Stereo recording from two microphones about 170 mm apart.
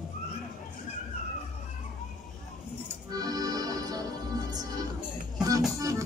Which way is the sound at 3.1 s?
20° right (ahead or behind).